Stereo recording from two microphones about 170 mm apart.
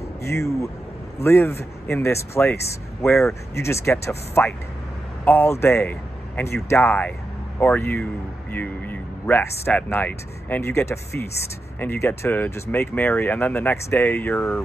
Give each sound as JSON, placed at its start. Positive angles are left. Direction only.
{"t": 0.2, "sound": "speech", "side_deg": 15}
{"t": 3.1, "sound": "speech", "side_deg": 0}
{"t": 3.5, "sound": "speech", "side_deg": 15}